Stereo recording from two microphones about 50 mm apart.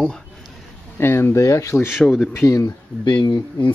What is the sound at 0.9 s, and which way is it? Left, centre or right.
Speech, left.